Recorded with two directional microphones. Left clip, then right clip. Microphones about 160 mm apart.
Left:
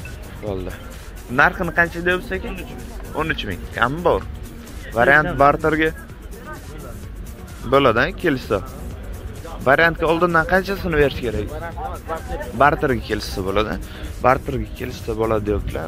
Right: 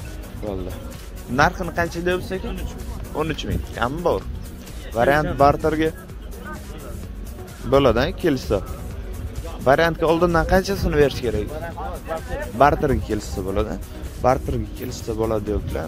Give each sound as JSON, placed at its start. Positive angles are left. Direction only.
{"t": 1.3, "sound": "speech", "side_deg": -25}
{"t": 2.0, "sound": "speech", "side_deg": -40}
{"t": 7.7, "sound": "speech", "side_deg": -45}
{"t": 9.7, "sound": "speech", "side_deg": -40}
{"t": 12.5, "sound": "speech", "side_deg": -35}